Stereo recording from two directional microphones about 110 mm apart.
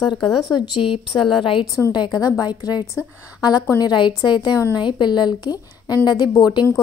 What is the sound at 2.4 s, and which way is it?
A woman's voice, 40° left (ahead or behind).